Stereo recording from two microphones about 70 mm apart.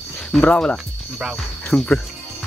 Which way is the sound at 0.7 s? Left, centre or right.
Centre.